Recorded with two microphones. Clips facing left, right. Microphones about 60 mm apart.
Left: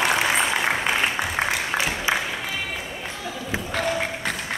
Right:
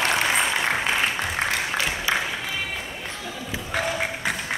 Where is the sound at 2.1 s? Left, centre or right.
Centre.